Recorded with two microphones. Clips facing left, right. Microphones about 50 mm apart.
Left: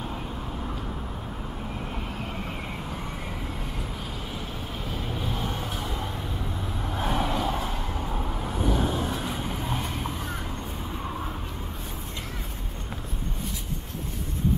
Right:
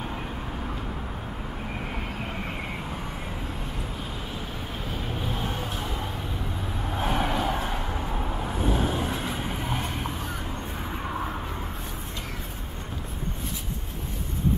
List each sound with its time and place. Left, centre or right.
5.2 s vehicle: centre
7.0 s vehicle: right
8.0 s vehicle: centre